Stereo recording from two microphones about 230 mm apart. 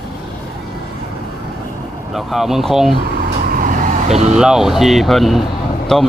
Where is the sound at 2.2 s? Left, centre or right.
Centre.